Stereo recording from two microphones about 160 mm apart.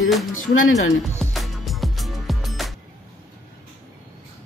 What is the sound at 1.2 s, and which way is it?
Music, centre (ahead or behind).